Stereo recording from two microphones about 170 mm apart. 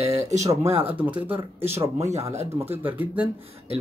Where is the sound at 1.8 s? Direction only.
40° right (ahead or behind).